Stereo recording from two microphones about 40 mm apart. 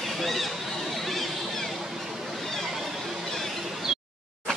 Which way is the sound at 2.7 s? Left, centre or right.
Centre.